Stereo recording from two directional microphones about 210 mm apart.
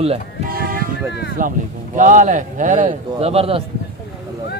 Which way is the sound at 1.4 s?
40° right (ahead or behind).